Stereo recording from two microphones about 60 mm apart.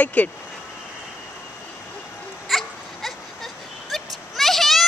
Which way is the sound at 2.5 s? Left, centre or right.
Centre.